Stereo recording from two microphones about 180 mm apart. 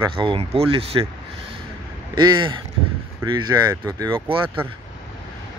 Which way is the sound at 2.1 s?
25° right (ahead or behind).